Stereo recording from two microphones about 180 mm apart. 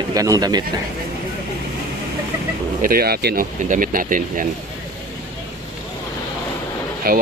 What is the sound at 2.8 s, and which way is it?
Speech, 60° right (ahead or behind).